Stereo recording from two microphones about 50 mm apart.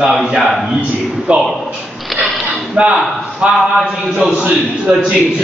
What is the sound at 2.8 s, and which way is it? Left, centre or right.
Speech, centre.